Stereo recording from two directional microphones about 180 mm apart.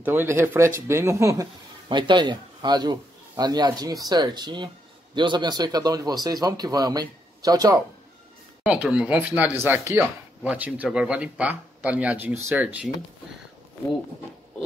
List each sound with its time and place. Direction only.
0.0 s speech: 10° right (ahead or behind)
8.6 s speech: 5° right (ahead or behind)